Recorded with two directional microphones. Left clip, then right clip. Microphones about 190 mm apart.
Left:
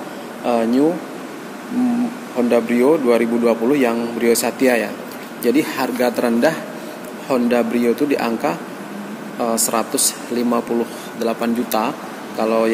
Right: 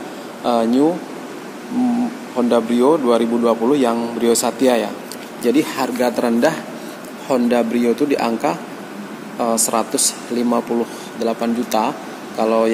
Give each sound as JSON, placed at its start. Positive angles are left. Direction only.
{"t": 0.5, "sound": "a man's voice", "side_deg": -15}
{"t": 2.3, "sound": "a man's voice", "side_deg": -15}